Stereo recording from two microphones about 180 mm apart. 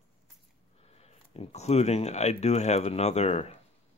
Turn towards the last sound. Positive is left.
turn(degrees=35)  # may be behind; listen again after turning